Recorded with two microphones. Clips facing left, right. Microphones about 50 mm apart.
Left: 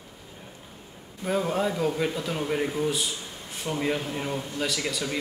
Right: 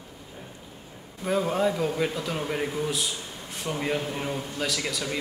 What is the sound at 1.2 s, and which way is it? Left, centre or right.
A man's voice, centre.